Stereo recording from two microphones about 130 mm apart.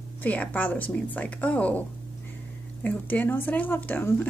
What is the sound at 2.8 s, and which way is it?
A woman's voice, 15° left (ahead or behind).